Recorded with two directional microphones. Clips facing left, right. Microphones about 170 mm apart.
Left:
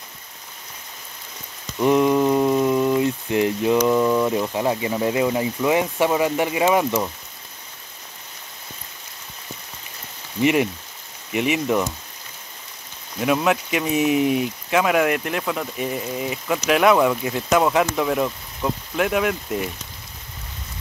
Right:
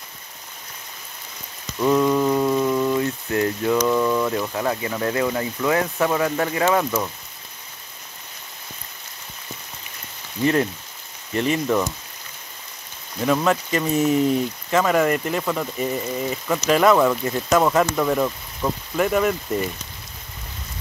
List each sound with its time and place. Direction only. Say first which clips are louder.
1.8 s speech: left 1 dB; 15° left (ahead or behind)
10.4 s speech: left 1 dB; 15° left (ahead or behind)
13.2 s speech: even; 5° left (ahead or behind)